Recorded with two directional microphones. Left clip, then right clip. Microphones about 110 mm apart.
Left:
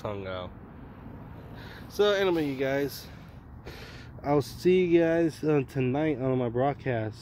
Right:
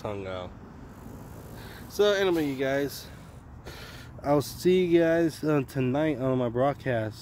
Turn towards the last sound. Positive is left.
turn(degrees=-25)  # may be behind; listen again after turning